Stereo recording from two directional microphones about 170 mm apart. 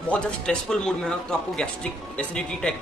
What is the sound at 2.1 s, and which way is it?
Speech, 5° left (ahead or behind).